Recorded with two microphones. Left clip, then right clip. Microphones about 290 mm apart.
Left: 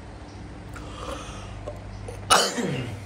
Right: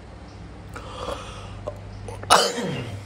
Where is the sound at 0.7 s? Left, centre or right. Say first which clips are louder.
Right 4 dB; centre.